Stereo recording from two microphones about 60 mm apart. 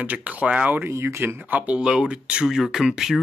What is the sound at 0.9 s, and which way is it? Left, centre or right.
Speech, right.